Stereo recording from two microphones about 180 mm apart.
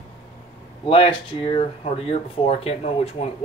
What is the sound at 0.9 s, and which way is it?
Speech, 30° left (ahead or behind).